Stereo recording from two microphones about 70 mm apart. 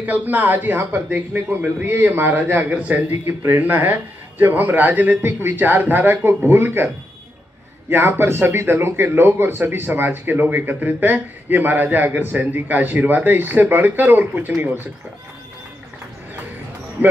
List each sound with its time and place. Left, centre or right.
0.0 s a man's voice: right
3.1 s a man's voice: right
7.9 s a man's voice: right